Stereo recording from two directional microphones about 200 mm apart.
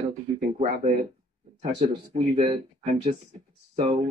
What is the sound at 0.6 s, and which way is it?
Speech, 40° right (ahead or behind).